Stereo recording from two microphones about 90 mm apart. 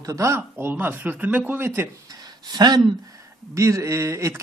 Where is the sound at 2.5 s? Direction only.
50° right (ahead or behind).